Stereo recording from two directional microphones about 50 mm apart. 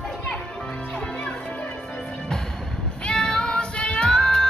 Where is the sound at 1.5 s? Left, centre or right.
Left.